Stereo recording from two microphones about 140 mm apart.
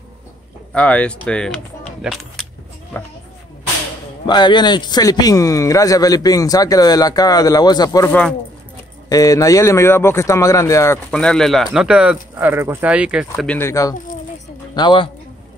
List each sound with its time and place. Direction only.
0.7 s speech: 10° left (ahead or behind)
2.9 s speech: 10° left (ahead or behind)
4.3 s a man's voice: 30° left (ahead or behind)
8.1 s speech: 10° left (ahead or behind)
9.1 s a man's voice: 25° left (ahead or behind)
11.1 s speech: 5° left (ahead or behind)
13.5 s a man's voice: 20° left (ahead or behind)
14.7 s a man's voice: 35° left (ahead or behind)